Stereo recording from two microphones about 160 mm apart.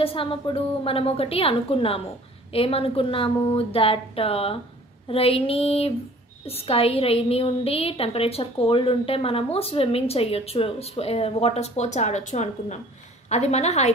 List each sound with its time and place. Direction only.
0.0 s a woman's voice: 35° left (ahead or behind)